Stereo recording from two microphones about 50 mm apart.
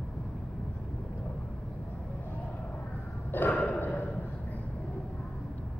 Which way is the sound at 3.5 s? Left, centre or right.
Left.